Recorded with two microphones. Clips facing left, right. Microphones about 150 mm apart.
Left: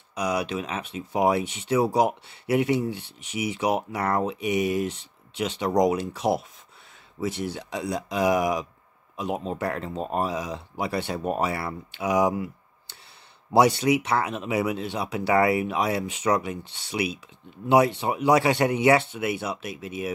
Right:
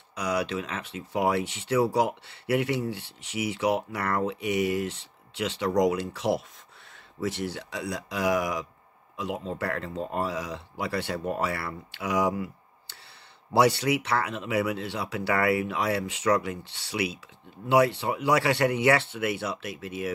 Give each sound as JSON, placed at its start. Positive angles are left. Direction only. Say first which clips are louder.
{"t": 0.1, "sound": "speech", "louder": "left 2 dB", "side_deg": 15}
{"t": 13.5, "sound": "speech", "louder": "left 3 dB", "side_deg": 20}